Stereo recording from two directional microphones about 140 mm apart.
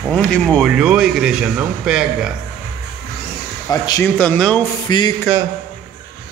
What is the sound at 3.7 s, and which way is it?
Speech, 30° left (ahead or behind).